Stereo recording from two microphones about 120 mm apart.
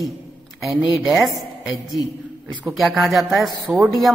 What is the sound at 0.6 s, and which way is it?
Speech, 5° right (ahead or behind).